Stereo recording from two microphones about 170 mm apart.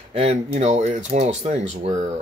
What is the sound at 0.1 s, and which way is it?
Speech, 40° right (ahead or behind).